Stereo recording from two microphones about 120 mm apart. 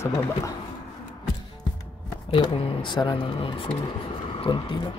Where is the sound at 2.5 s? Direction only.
45° left (ahead or behind).